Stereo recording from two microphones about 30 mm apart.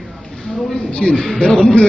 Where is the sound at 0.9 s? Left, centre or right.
Left.